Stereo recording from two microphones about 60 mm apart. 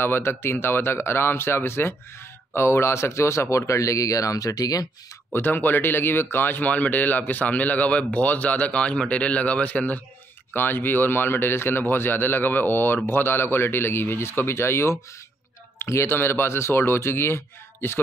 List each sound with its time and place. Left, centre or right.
0.0 s speech: left
5.3 s a man's voice: left
10.5 s a man's voice: left